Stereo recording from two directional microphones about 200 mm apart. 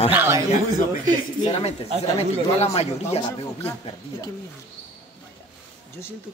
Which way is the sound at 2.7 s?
30° left (ahead or behind).